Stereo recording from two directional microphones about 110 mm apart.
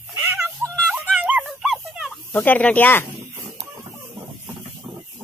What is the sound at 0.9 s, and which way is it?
Music, 10° right (ahead or behind).